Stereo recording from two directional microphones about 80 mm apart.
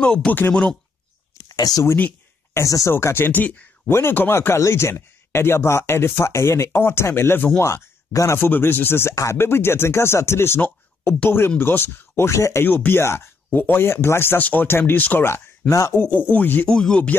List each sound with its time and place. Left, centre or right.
0.0 s speech: centre
1.5 s speech: left
2.9 s speech: left
3.3 s speech: left
7.6 s speech: left
8.5 s speech: left
12.6 s speech: left
16.6 s speech: centre